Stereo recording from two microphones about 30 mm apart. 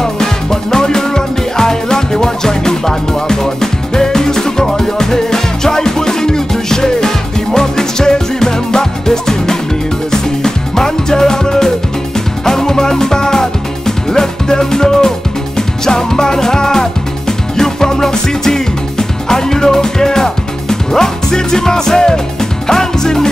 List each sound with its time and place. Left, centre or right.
0.0 s music: centre